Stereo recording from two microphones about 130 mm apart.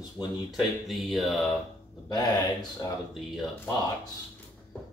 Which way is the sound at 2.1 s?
30° left (ahead or behind).